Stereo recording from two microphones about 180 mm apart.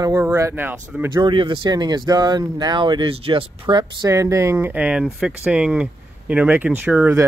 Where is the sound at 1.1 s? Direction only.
30° right (ahead or behind).